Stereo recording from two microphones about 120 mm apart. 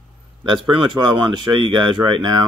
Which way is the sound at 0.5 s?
40° right (ahead or behind).